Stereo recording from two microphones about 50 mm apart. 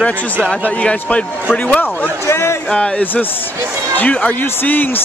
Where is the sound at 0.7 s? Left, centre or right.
Left.